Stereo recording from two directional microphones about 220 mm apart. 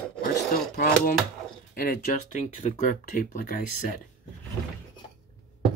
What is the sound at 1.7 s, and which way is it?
Speech, 40° left (ahead or behind).